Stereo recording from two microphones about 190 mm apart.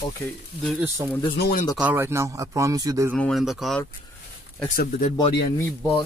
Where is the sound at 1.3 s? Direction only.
60° left (ahead or behind).